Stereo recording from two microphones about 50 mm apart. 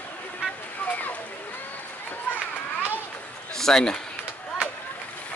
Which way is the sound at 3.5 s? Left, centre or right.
Centre.